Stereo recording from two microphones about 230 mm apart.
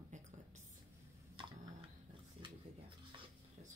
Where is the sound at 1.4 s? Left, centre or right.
Right.